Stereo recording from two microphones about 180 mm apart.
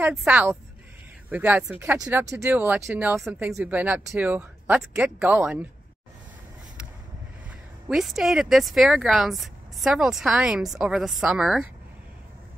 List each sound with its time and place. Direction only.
0.1 s speech: 5° right (ahead or behind)
7.9 s speech: centre (ahead or behind)